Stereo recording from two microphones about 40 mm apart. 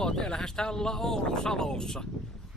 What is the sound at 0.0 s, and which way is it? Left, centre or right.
Speech, centre.